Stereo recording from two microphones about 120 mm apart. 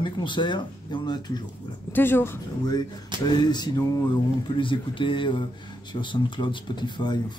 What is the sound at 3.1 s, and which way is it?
Speech, 40° right (ahead or behind).